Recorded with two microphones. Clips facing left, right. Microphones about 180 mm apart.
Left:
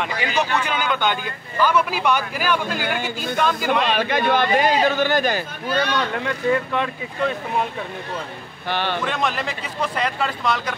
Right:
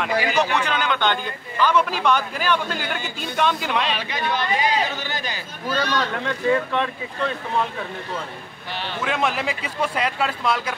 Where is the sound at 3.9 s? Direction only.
50° left (ahead or behind).